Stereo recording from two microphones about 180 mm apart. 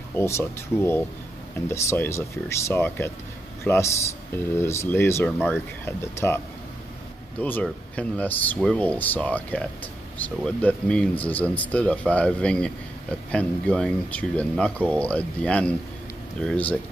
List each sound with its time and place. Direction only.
0.1 s speech: 15° left (ahead or behind)